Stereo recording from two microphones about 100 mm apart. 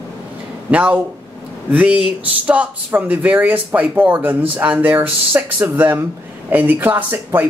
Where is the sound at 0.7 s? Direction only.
15° right (ahead or behind).